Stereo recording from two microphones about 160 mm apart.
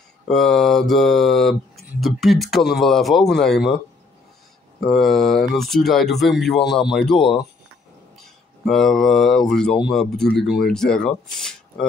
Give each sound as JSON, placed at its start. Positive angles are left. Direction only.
{"t": 0.3, "sound": "speech", "side_deg": 0}
{"t": 4.8, "sound": "speech", "side_deg": 0}
{"t": 8.6, "sound": "speech", "side_deg": 0}